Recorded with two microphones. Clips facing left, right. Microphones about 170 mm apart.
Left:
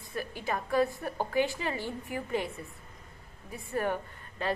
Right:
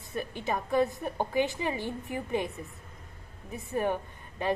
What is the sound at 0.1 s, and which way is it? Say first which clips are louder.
A woman's voice: right 2 dB; 20° right (ahead or behind).